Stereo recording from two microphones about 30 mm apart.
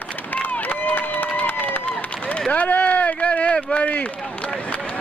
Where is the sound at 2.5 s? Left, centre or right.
Left.